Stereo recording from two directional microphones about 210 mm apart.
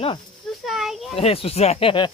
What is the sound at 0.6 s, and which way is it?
Children playing, centre (ahead or behind).